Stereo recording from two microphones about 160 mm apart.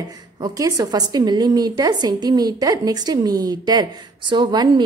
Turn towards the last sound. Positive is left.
turn(degrees=-25)  # may be behind; listen again after turning